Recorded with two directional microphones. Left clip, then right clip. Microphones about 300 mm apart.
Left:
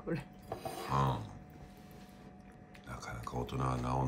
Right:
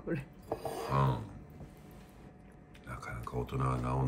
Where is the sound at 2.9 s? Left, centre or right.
Centre.